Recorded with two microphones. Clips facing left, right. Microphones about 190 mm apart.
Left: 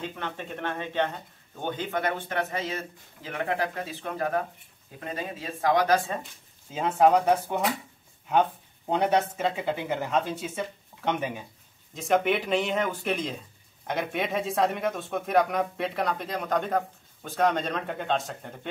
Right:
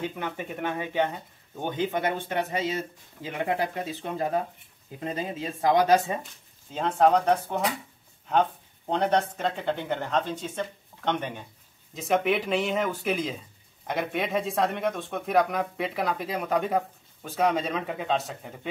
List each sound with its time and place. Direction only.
0.0 s speech: 10° right (ahead or behind)
1.8 s speech: 20° right (ahead or behind)
6.7 s speech: 5° left (ahead or behind)